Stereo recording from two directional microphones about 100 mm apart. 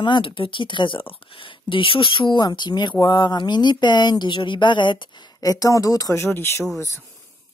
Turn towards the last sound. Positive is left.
turn(degrees=30)  # may be behind; listen again after turning